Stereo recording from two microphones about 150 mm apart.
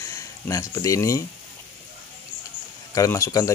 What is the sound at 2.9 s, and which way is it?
Speech, 20° left (ahead or behind).